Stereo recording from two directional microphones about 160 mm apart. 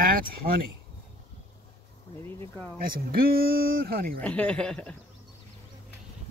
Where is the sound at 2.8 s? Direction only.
65° right (ahead or behind).